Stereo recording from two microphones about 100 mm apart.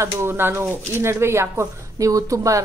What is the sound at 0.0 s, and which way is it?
Speech, 25° right (ahead or behind).